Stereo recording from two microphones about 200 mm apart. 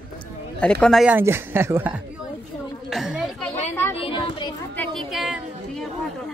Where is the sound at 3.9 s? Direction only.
25° left (ahead or behind).